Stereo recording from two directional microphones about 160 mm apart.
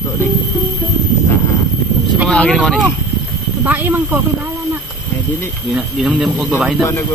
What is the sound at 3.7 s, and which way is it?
Speech, 10° right (ahead or behind).